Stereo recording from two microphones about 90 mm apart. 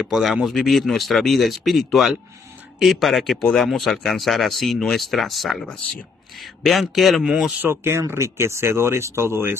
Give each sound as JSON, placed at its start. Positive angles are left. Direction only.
{"t": 0.0, "sound": "speech", "side_deg": 0}
{"t": 7.6, "sound": "speech", "side_deg": -25}